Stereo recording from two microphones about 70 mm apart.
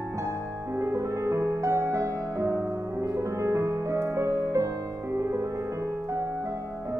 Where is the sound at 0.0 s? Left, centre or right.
Right.